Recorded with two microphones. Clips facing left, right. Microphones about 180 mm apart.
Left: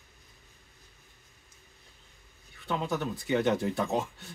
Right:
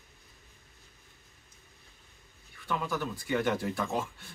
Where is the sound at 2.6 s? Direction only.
25° left (ahead or behind).